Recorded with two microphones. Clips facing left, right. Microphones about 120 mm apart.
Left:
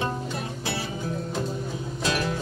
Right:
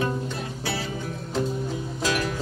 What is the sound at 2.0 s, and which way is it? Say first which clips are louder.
Music: right 1 dB; 30° left (ahead or behind).